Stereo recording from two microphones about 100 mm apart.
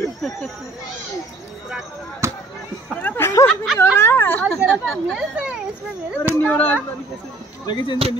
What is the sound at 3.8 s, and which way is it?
Speech, 25° left (ahead or behind).